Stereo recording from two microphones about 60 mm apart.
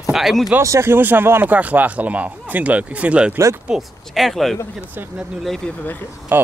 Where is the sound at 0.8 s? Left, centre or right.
Right; by 3.8 s centre.